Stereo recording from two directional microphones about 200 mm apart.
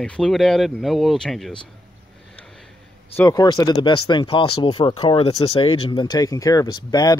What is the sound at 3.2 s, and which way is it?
Speech, 20° left (ahead or behind).